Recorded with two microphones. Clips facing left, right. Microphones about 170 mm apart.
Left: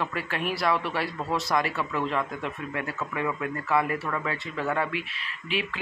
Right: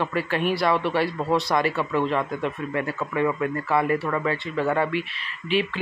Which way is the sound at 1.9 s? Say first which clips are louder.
Right 3 dB; 30° right (ahead or behind).